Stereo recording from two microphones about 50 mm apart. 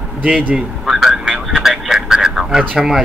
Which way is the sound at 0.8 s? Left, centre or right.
Centre.